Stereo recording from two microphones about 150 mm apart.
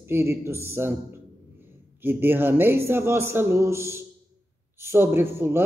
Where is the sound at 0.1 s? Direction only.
15° right (ahead or behind).